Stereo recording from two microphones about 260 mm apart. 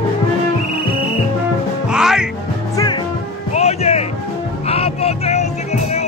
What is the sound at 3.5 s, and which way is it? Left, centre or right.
Music, left.